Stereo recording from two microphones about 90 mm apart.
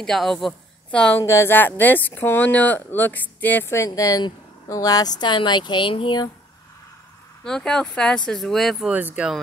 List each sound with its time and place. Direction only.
0.0 s a woman's voice: centre (ahead or behind)
1.2 s speech: 30° left (ahead or behind)
3.7 s speech: 35° left (ahead or behind); by 6.1 s 65° left (ahead or behind)
7.4 s speech: 5° left (ahead or behind)
8.9 s speech: 15° right (ahead or behind)